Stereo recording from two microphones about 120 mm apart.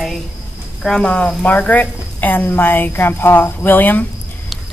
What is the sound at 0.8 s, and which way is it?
A woman's voice, 5° left (ahead or behind).